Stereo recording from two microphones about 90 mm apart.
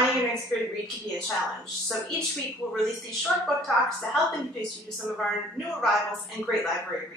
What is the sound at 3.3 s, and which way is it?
Speech, 5° right (ahead or behind).